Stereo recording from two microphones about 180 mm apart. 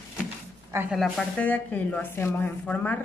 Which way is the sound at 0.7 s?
15° right (ahead or behind).